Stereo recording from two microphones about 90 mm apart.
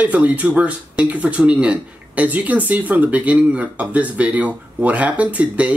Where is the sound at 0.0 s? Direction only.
15° right (ahead or behind).